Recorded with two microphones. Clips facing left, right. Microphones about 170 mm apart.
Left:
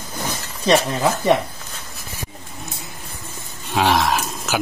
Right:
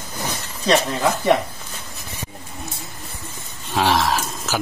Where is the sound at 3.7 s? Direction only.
Centre (ahead or behind).